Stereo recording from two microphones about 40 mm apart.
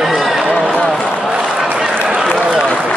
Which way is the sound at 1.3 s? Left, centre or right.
Centre.